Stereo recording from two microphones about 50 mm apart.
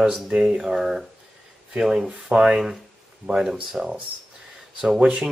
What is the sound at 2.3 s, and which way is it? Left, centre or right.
Speech, right.